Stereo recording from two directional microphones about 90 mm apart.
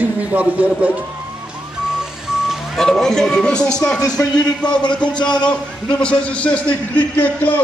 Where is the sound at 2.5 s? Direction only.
5° left (ahead or behind).